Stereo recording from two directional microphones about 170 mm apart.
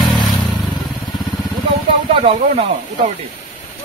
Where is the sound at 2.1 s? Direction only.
35° right (ahead or behind).